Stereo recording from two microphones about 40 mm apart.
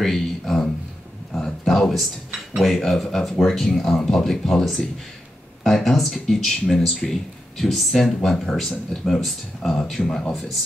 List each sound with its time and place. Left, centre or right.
0.0 s speech: centre
1.3 s a sound: centre
2.6 s speech: centre